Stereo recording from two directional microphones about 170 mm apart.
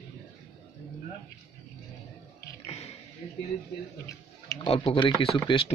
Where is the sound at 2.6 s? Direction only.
40° left (ahead or behind).